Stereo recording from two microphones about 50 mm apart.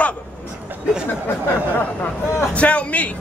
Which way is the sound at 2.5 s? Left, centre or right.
Left.